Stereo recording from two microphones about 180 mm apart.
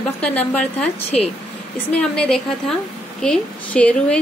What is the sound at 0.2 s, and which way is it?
A woman's voice, 5° left (ahead or behind).